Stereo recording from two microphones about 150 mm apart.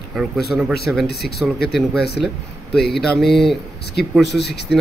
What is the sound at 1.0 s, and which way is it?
Speech, 90° left.